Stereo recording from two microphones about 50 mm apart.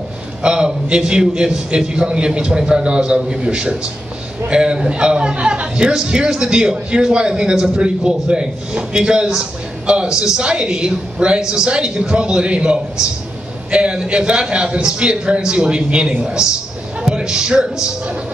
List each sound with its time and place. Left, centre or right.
0.4 s a man's voice: centre